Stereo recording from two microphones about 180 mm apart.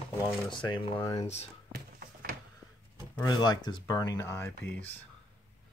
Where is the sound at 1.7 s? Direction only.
60° right (ahead or behind).